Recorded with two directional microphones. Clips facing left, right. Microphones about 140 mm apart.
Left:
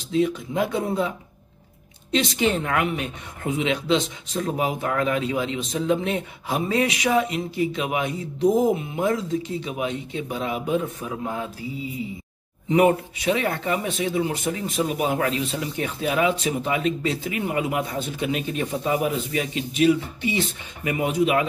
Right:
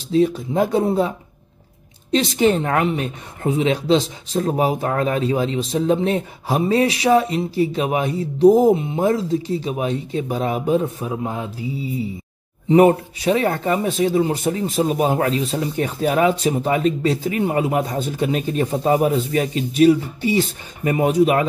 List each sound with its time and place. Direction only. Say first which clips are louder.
0.1 s speech: right 5 dB; 35° right (ahead or behind)
2.1 s speech: right 5 dB; 40° right (ahead or behind)
11.1 s mantra: right 4 dB; 25° right (ahead or behind)
12.6 s speech: right 5 dB; 35° right (ahead or behind)